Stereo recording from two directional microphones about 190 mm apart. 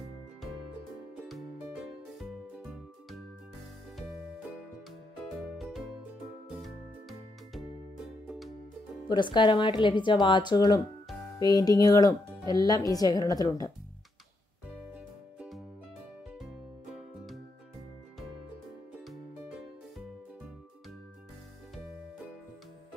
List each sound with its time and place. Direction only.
1.1 s music: 5° right (ahead or behind)
5.4 s music: centre (ahead or behind)
9.1 s speech: 25° left (ahead or behind)
15.3 s music: centre (ahead or behind)